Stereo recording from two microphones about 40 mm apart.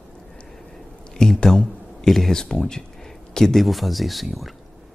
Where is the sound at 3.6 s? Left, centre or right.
Centre.